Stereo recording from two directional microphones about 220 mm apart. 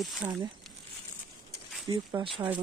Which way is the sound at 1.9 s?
20° right (ahead or behind).